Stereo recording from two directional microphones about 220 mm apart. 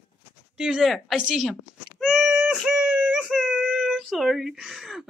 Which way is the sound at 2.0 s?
Centre (ahead or behind).